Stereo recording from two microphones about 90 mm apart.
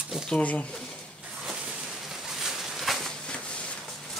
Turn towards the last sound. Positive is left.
turn(degrees=10)  # may be behind; listen again after turning